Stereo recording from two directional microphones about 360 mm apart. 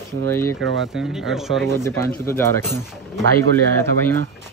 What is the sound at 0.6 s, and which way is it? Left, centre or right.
Speech, right.